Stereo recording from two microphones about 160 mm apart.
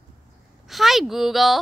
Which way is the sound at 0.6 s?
Centre (ahead or behind).